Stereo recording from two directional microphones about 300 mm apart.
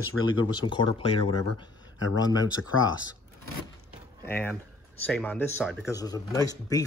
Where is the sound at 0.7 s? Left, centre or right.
Centre.